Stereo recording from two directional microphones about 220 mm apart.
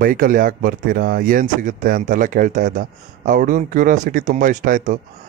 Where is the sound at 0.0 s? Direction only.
40° right (ahead or behind).